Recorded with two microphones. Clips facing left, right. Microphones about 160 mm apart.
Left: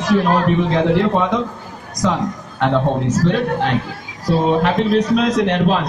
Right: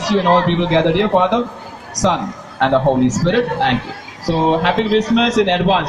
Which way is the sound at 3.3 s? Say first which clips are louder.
Right 2 dB; 90° right.